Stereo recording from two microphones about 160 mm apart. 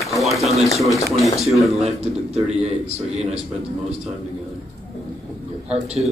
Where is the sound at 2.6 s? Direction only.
40° right (ahead or behind).